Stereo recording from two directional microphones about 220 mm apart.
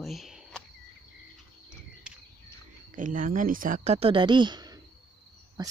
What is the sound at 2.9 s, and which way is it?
Speech, 35° right (ahead or behind).